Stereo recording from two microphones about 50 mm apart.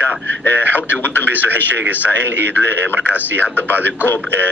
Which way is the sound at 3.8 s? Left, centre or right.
Left.